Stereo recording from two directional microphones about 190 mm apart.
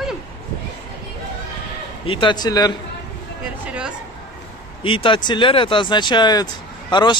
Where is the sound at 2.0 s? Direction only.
25° left (ahead or behind).